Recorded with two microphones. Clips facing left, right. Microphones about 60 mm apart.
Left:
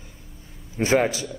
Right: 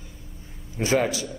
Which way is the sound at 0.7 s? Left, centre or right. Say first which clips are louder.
Left 2 dB; left.